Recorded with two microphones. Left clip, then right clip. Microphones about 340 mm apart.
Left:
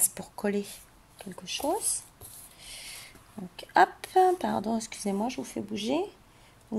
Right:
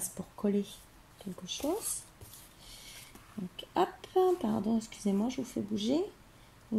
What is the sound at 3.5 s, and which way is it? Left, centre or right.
Speech, left.